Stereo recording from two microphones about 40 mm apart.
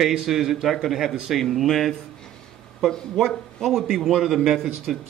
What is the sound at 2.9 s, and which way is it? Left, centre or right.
Speech, centre.